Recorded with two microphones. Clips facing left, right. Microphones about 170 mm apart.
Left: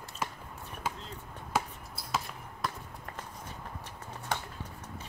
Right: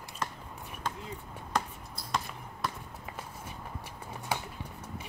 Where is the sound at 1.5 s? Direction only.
5° left (ahead or behind).